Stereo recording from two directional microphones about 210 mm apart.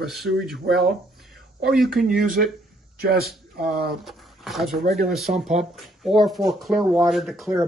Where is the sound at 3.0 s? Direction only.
45° right (ahead or behind).